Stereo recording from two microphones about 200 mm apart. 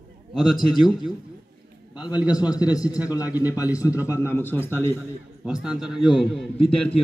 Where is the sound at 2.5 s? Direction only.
20° left (ahead or behind).